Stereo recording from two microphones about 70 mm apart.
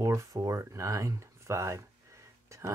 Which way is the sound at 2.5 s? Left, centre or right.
Right.